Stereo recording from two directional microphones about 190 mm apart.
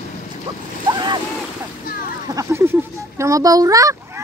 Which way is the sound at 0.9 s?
25° right (ahead or behind).